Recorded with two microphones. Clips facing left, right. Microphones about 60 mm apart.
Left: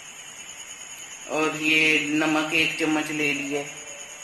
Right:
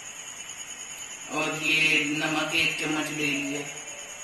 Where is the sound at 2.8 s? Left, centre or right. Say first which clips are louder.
Left 5 dB; left.